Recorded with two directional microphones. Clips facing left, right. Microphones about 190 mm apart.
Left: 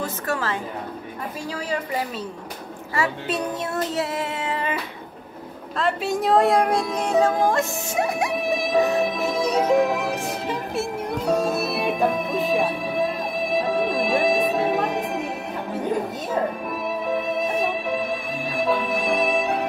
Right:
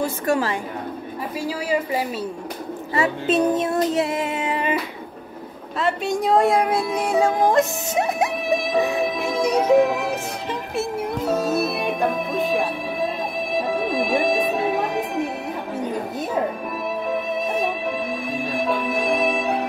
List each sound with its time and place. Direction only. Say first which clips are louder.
0.0 s speech: right 5 dB; 15° right (ahead or behind)
1.7 s speech: right 4 dB; 10° right (ahead or behind)
2.9 s child singing: right 4 dB; 20° right (ahead or behind)
5.8 s speech: right 1 dB; centre (ahead or behind); by 8.3 s 20° right (ahead or behind)
8.5 s music: left 2 dB; centre (ahead or behind)
17.1 s music: left 1 dB; centre (ahead or behind)